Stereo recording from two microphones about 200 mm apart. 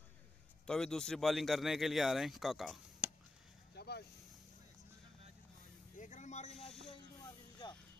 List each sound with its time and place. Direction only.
0.7 s speech: 5° left (ahead or behind)
3.7 s vehicle: 55° left (ahead or behind)
5.9 s vehicle: 40° left (ahead or behind)